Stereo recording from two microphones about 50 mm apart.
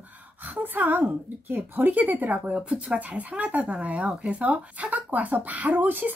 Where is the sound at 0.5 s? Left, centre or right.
Right.